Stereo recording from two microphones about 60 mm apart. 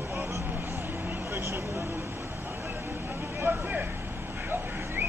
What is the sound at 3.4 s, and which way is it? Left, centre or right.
Vehicle, right.